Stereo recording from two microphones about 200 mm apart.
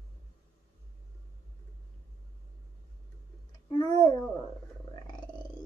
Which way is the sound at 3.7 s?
25° left (ahead or behind).